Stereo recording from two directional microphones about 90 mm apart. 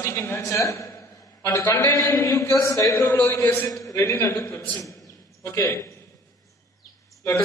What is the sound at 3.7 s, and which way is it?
A man's voice, 40° left (ahead or behind).